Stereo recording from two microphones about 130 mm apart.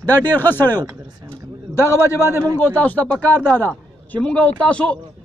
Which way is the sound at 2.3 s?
25° right (ahead or behind).